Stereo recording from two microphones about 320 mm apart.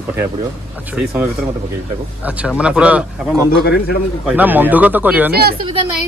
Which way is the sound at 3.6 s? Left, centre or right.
Left.